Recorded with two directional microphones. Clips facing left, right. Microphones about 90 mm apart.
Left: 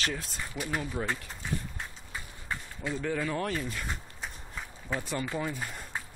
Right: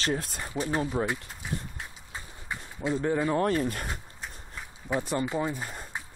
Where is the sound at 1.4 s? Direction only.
10° right (ahead or behind).